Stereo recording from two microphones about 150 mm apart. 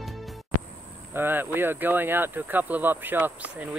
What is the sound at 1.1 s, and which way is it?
Speech, 15° right (ahead or behind).